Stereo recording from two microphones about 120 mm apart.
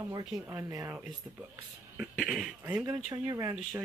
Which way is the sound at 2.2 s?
Centre (ahead or behind).